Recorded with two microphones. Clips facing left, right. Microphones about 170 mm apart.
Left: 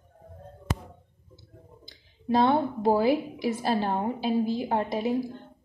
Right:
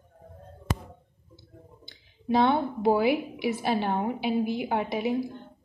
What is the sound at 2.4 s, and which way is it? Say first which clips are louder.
Speech: left 1 dB; centre (ahead or behind).